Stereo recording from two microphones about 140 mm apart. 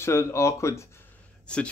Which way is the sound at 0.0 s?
20° left (ahead or behind).